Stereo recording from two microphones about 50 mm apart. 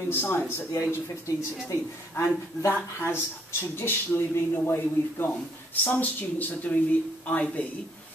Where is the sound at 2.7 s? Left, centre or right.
Left.